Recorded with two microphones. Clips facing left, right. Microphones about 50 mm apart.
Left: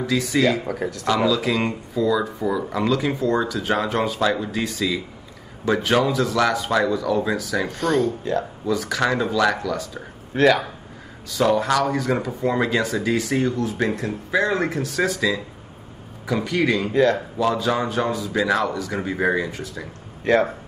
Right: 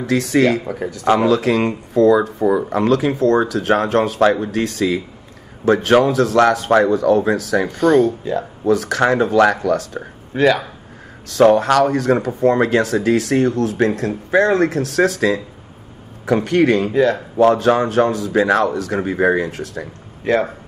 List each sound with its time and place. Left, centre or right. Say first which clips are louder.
0.0 s speech: right 4 dB; right
0.7 s speech: right 2 dB; centre
1.0 s speech: right 6 dB; right
7.7 s speech: right 8 dB; centre
8.6 s speech: right 8 dB; right
10.3 s speech: right 2 dB; centre
11.3 s speech: right 7 dB; right
16.9 s speech: right 2 dB; centre
17.4 s speech: right 12 dB; right
18.3 s speech: right 4 dB; right
20.2 s speech: right 1 dB; centre